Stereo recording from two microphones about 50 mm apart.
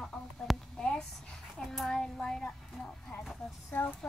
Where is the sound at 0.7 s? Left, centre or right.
Centre.